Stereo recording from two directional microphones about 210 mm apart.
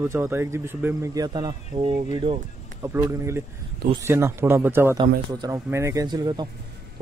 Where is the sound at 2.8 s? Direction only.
15° right (ahead or behind).